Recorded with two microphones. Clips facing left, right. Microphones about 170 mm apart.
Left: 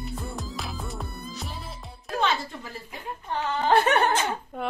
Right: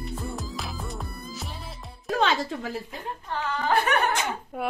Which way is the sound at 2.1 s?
90° right.